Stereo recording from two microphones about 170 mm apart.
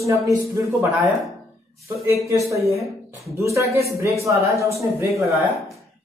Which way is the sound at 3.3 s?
15° right (ahead or behind).